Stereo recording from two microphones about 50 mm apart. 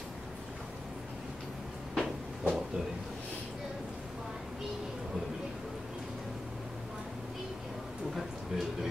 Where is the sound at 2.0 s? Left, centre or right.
Centre.